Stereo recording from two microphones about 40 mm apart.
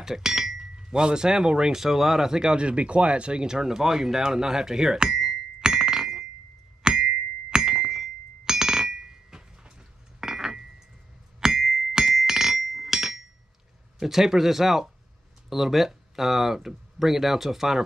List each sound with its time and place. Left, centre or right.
0.0 s speech: centre
6.8 s a sound: centre
7.5 s chink: centre
10.2 s glass: centre
11.4 s a sound: centre
13.9 s speech: centre